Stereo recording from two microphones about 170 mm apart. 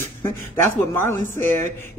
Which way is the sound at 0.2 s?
15° left (ahead or behind).